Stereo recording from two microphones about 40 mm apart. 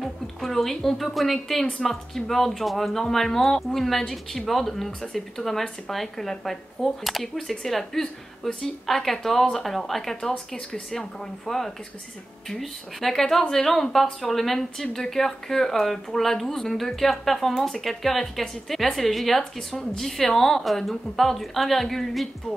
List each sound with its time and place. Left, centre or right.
0.0 s a woman's voice: centre
10.3 s a woman's voice: centre